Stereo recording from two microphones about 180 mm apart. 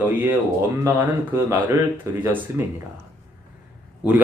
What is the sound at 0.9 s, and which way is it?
Speech, 10° right (ahead or behind).